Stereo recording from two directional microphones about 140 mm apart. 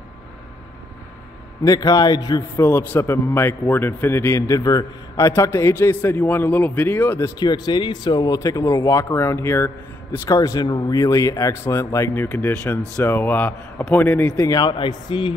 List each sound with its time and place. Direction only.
1.6 s a man's voice: 25° left (ahead or behind)
2.5 s a man's voice: 15° left (ahead or behind)
14.4 s a man's voice: 30° left (ahead or behind)